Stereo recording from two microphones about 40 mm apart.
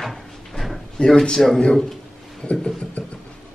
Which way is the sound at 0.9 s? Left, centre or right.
Centre.